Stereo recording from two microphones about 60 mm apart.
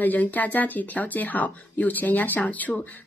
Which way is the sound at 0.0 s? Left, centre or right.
Left.